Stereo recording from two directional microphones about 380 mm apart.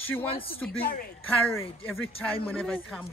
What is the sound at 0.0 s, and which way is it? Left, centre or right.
Speech, centre.